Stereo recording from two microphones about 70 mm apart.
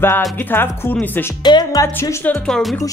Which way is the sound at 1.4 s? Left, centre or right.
Left.